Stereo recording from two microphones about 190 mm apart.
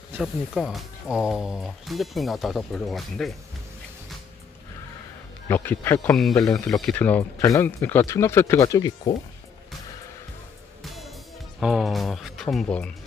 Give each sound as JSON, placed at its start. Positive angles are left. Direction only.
{"t": 0.2, "sound": "speech", "side_deg": 0}
{"t": 5.5, "sound": "speech", "side_deg": 10}
{"t": 10.8, "sound": "music", "side_deg": 0}
{"t": 11.6, "sound": "speech", "side_deg": 0}